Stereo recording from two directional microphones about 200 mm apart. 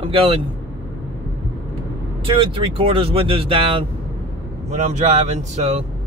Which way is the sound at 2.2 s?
25° right (ahead or behind).